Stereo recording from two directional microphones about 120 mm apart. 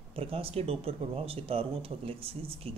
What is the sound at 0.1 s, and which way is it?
Speech, 50° right (ahead or behind).